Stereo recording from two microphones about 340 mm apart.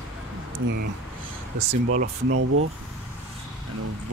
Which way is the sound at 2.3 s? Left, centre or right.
Right.